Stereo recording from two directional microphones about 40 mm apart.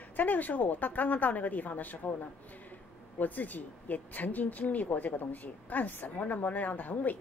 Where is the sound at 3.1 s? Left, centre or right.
Left.